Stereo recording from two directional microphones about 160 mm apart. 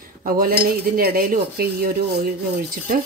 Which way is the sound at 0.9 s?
65° right (ahead or behind).